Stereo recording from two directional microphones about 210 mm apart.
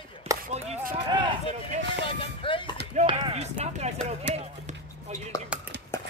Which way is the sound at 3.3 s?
30° right (ahead or behind).